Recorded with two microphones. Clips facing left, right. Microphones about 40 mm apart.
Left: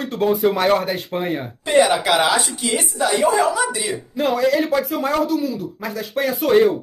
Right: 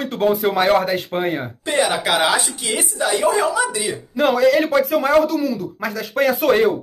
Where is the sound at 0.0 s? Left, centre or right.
Right.